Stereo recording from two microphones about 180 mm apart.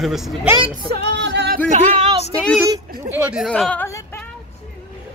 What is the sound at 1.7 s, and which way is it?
Speech, 30° right (ahead or behind).